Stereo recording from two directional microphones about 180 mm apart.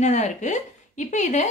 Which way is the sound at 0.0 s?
40° left (ahead or behind).